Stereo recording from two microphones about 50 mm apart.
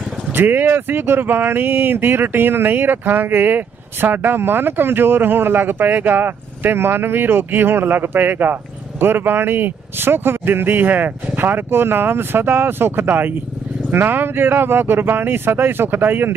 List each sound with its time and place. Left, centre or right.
0.3 s speech: right